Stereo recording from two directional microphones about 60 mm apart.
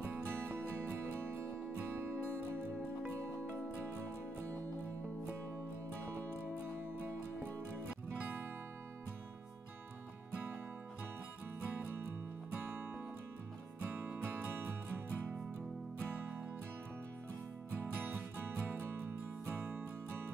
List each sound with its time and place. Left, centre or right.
0.1 s music: right
6.1 s music: right
14.0 s music: right
16.2 s music: right
18.0 s music: right